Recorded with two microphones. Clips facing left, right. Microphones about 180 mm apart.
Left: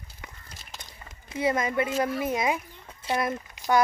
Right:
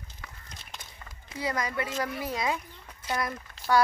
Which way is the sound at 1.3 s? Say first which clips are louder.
Left 6 dB; 25° left (ahead or behind).